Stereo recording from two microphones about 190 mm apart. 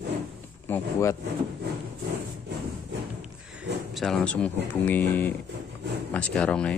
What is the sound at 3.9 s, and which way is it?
Speech, centre (ahead or behind).